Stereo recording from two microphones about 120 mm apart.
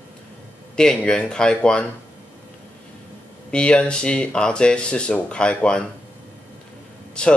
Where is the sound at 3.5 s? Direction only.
10° left (ahead or behind).